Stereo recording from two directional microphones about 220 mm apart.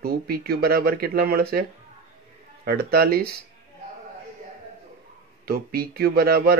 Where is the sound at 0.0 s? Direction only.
45° right (ahead or behind).